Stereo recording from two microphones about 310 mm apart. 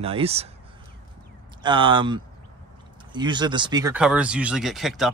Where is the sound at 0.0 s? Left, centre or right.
Centre.